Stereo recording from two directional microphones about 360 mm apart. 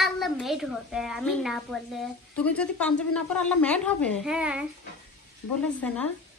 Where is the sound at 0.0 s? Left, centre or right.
Centre.